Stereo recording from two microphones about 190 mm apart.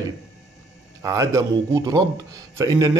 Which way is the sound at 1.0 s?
20° right (ahead or behind).